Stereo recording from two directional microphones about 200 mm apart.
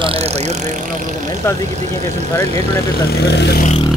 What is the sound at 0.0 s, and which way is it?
Speech, 30° right (ahead or behind).